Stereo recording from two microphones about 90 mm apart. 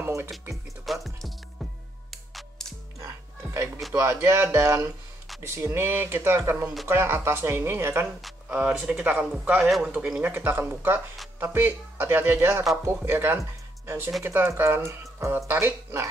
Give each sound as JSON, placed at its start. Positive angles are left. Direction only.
{"t": 0.0, "sound": "music", "side_deg": -25}
{"t": 0.8, "sound": "music", "side_deg": 0}
{"t": 3.5, "sound": "a sound", "side_deg": -30}
{"t": 3.9, "sound": "speech", "side_deg": -30}
{"t": 8.6, "sound": "speech", "side_deg": -10}